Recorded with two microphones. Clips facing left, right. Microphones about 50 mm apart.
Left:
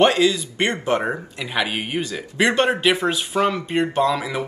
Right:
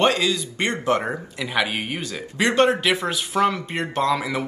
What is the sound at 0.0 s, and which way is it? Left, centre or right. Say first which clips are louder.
Speech: left 3 dB; left.